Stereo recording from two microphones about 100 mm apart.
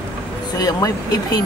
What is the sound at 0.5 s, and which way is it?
Speech, 40° left (ahead or behind).